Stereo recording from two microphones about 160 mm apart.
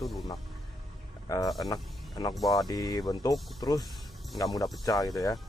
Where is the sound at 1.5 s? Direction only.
25° left (ahead or behind).